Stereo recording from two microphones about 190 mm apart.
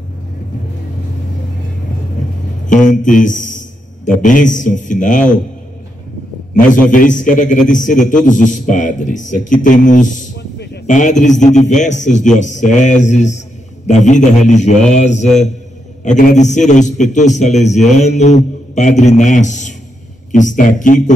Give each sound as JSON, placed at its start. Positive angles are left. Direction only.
{"t": 2.6, "sound": "a man's voice", "side_deg": 40}
{"t": 6.5, "sound": "a man's voice", "side_deg": 45}